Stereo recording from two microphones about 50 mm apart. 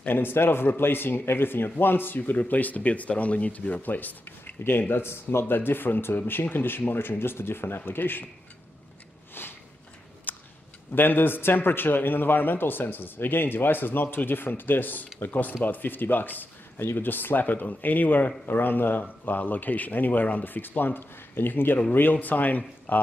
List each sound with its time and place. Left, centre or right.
0.1 s speech: left
9.3 s biting: left
10.3 s a sound: left
10.9 s speech: left